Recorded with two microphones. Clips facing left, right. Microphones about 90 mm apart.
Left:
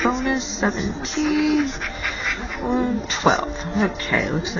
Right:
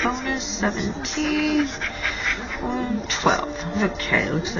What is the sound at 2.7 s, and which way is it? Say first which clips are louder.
Speech: left 5 dB; 20° left (ahead or behind).